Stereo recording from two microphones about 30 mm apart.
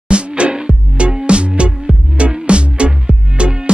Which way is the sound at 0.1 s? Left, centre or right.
Right.